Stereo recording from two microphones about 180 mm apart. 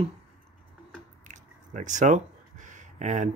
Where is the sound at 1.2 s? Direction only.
45° right (ahead or behind).